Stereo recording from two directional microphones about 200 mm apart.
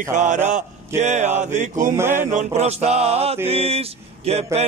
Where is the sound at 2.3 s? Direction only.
35° right (ahead or behind).